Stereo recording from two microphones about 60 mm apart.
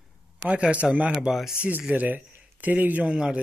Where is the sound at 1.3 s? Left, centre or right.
Centre.